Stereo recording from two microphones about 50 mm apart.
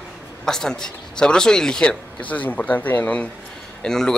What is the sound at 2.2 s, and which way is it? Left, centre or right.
Speech, left.